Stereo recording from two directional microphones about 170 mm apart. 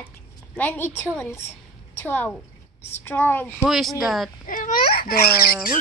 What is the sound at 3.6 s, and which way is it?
Speech, centre (ahead or behind).